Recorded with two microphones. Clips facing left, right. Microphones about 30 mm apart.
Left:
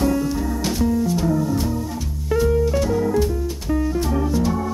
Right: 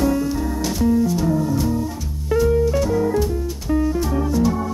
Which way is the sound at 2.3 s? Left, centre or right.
Centre.